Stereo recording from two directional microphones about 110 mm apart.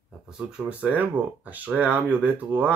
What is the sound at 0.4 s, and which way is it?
Speech, 10° right (ahead or behind).